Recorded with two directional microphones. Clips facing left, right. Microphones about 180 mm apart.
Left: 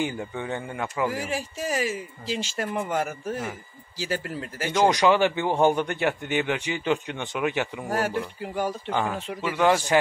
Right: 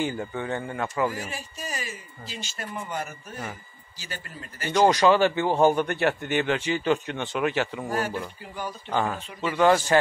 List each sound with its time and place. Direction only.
0.0 s a man's voice: 15° left (ahead or behind)
1.2 s speech: 90° left
4.7 s a man's voice: 15° left (ahead or behind)
7.9 s speech: 70° left (ahead or behind)
9.4 s a man's voice: 10° left (ahead or behind)